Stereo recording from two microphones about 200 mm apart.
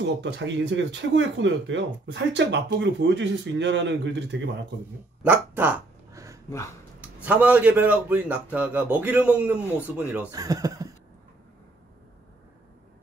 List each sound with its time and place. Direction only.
0.0 s speech: 65° right (ahead or behind)
5.2 s dog: 10° right (ahead or behind)
7.2 s a man's voice: 5° right (ahead or behind)
10.3 s speech: 20° right (ahead or behind)